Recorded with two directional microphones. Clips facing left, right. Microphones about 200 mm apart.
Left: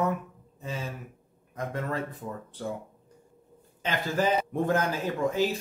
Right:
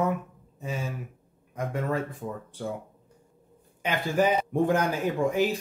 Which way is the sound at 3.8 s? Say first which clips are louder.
Right 3 dB; 15° right (ahead or behind).